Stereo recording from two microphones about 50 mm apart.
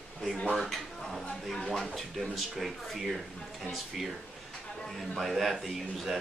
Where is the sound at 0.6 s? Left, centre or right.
Centre.